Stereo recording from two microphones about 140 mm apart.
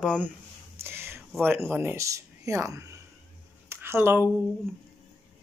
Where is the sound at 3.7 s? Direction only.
15° right (ahead or behind).